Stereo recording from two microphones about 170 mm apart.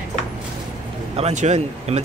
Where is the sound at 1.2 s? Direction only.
45° right (ahead or behind).